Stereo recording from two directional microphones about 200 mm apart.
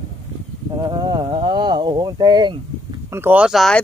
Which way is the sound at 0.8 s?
20° right (ahead or behind).